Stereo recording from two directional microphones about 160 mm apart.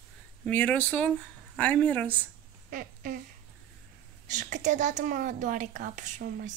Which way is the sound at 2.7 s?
60° right (ahead or behind).